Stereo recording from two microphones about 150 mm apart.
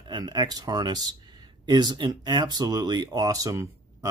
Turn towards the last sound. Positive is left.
turn(degrees=-20)  # may be behind; listen again after turning